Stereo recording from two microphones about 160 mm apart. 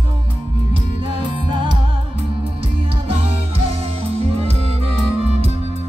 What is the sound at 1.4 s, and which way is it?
Music, 30° right (ahead or behind).